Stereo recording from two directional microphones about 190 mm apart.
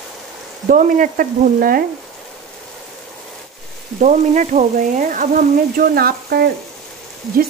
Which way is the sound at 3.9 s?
40° right (ahead or behind).